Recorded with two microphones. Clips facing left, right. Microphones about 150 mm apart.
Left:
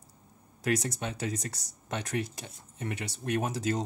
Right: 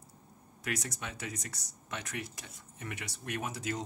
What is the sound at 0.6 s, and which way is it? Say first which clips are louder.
Speech: left 8 dB; 30° left (ahead or behind).